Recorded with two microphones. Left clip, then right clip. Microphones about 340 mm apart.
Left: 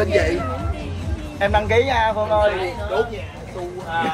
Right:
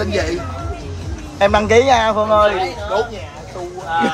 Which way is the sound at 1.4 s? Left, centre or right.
Right.